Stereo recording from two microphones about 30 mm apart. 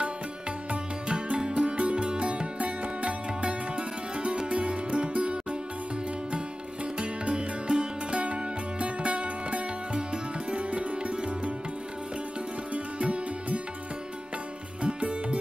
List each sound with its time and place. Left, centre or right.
1.0 s music: right
2.6 s music: right
7.0 s music: right
12.7 s music: right
14.8 s music: right